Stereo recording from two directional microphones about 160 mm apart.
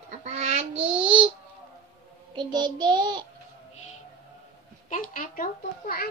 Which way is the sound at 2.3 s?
25° right (ahead or behind).